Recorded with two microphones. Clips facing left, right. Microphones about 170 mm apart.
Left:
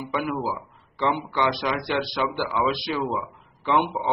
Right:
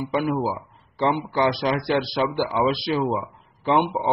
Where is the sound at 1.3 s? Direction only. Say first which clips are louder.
Right 3 dB; 35° right (ahead or behind).